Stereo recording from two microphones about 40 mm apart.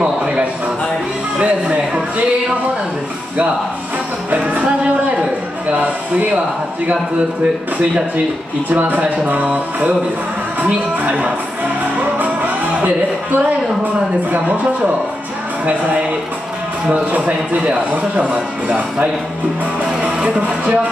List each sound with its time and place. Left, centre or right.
1.4 s a sound: right
4.3 s music: right
5.7 s speech: right
8.6 s speech: right
11.1 s speech: right
12.0 s music: right
14.3 s speech: right
17.5 s speech: right
18.1 s speech: right